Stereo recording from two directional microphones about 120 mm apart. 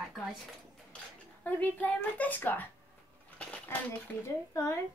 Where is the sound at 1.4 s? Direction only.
15° left (ahead or behind).